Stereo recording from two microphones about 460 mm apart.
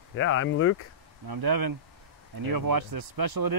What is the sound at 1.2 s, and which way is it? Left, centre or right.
Speech, right.